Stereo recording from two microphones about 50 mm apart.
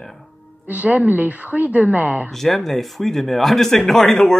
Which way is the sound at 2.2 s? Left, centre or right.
Centre.